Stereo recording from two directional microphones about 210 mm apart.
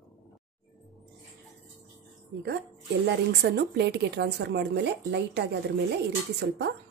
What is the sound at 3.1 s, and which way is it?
A woman's voice, 50° right (ahead or behind).